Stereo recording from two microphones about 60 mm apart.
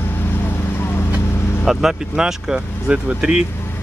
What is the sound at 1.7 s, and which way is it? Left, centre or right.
Speech, centre.